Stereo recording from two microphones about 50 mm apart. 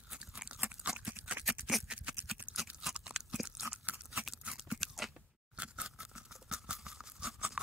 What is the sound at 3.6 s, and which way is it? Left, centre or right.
Crunch, right.